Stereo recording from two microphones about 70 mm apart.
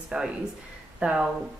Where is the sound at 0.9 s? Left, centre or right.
Centre.